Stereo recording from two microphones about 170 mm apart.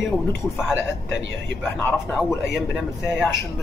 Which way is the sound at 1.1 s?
90° right.